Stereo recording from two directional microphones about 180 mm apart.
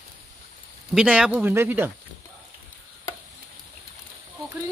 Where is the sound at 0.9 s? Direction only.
5° right (ahead or behind).